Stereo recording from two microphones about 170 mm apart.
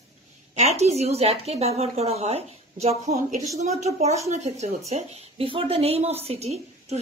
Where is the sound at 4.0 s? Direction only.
40° right (ahead or behind).